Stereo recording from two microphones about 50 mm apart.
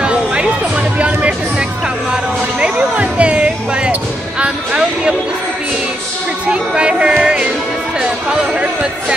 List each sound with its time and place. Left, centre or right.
0.0 s music: right
0.9 s speech: right
2.6 s basketball bounce: right
4.4 s music: right
6.4 s music: right